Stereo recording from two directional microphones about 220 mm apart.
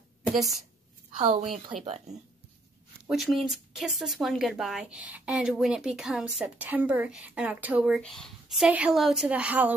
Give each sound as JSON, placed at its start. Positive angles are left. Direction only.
{"t": 0.3, "sound": "a woman's voice", "side_deg": 0}
{"t": 1.2, "sound": "a woman's voice", "side_deg": -30}
{"t": 3.1, "sound": "speech", "side_deg": 0}